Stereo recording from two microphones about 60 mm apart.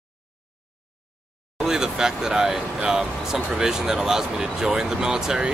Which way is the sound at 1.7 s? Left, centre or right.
Centre.